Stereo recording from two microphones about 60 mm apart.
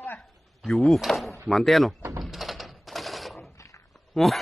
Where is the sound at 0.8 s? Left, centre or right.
Centre.